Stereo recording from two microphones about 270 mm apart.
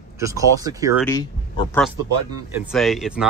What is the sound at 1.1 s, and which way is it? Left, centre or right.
Speech, centre.